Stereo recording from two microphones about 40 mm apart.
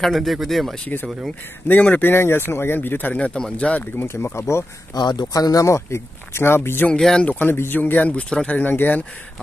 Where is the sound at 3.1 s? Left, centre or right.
Left.